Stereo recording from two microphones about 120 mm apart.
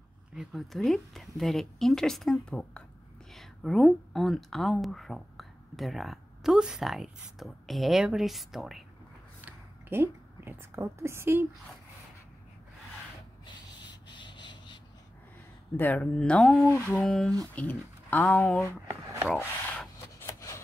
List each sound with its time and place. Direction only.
0.4 s speech: centre (ahead or behind)
9.4 s a woman's voice: 15° right (ahead or behind)
13.7 s a sound: 40° left (ahead or behind)
15.7 s speech: 15° left (ahead or behind)
16.6 s speech: 20° left (ahead or behind)
16.9 s speech: 5° left (ahead or behind)
17.6 s speech: 15° left (ahead or behind)
19.2 s a sound: 5° left (ahead or behind)
20.0 s rub: 20° left (ahead or behind)